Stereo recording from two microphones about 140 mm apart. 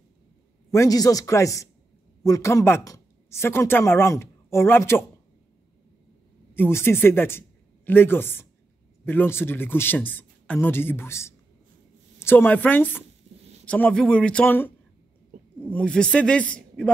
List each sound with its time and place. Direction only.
0.7 s a woman's voice: 25° left (ahead or behind)
6.5 s a man's voice: 15° left (ahead or behind)
15.7 s a man's voice: 5° left (ahead or behind)